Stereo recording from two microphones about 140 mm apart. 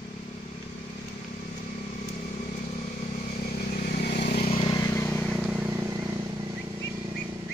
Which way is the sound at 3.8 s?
60° left (ahead or behind).